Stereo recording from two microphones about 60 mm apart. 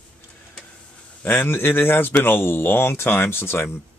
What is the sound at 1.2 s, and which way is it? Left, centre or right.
Speech, left.